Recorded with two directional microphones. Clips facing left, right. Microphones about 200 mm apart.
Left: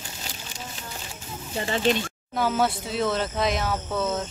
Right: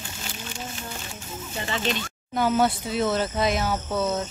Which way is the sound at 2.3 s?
Centre (ahead or behind).